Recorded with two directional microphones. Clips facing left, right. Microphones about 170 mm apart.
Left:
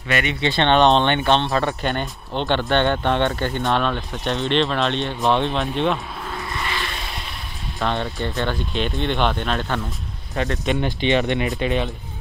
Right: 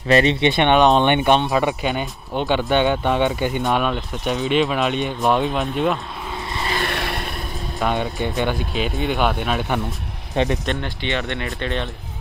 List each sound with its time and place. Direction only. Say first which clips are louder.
0.1 s speech: right 7 dB; 30° right (ahead or behind)
0.4 s speech: right 2 dB; 15° right (ahead or behind)
1.8 s speech: right 1 dB; 5° right (ahead or behind)
6.6 s vehicle: right 6 dB; 40° right (ahead or behind)
6.9 s vehicle: right 7 dB; 65° right (ahead or behind)
7.8 s speech: right 2 dB; 15° right (ahead or behind)
10.3 s speech: right 4 dB; 20° right (ahead or behind)
10.8 s speech: left 5 dB; 15° left (ahead or behind)